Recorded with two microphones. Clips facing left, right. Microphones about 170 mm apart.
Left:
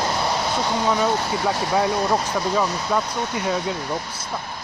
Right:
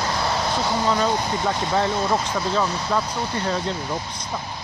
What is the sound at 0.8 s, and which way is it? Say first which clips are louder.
Speech: left 1 dB; 10° left (ahead or behind).